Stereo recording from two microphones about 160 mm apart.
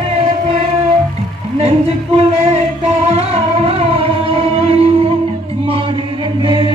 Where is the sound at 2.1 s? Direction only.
40° right (ahead or behind).